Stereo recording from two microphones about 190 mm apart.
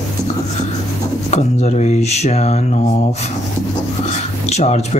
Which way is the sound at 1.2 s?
35° left (ahead or behind).